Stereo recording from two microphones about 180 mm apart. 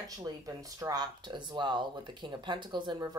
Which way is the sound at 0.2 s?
20° right (ahead or behind).